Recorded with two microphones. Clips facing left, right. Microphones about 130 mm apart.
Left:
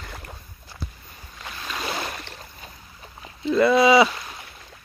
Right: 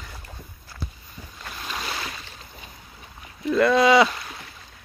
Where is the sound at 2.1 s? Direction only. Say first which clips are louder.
Left 4 dB; 60° left (ahead or behind).